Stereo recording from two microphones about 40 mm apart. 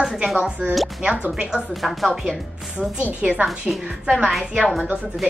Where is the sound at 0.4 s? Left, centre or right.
Right.